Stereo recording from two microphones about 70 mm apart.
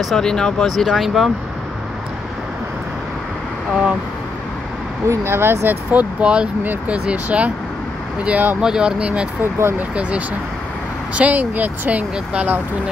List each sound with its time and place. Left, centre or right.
0.0 s speech: centre
5.0 s speech: right
6.2 s speech: centre
9.4 s speech: right
9.8 s speech: right